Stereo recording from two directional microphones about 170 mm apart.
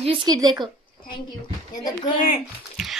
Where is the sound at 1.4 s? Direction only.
25° left (ahead or behind).